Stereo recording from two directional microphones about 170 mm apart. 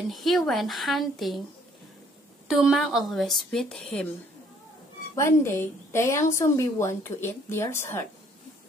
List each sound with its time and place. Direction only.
0.1 s a woman's voice: centre (ahead or behind)
2.4 s a woman's voice: 5° right (ahead or behind)
5.1 s a woman's voice: 15° left (ahead or behind)